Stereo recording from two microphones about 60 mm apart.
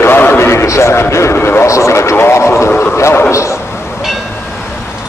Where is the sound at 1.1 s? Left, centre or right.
Left.